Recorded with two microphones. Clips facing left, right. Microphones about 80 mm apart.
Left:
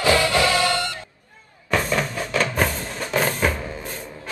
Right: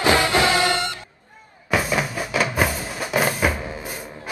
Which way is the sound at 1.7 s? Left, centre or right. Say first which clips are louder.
Even; centre.